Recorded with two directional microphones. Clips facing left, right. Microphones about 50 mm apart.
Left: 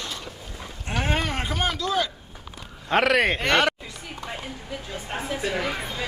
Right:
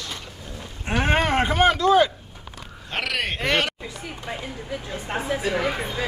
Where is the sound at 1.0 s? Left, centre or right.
Right.